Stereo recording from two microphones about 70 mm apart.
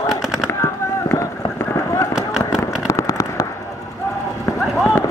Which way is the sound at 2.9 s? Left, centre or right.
Left.